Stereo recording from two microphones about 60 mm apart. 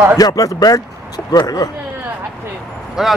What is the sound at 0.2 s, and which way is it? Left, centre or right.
Speech, left.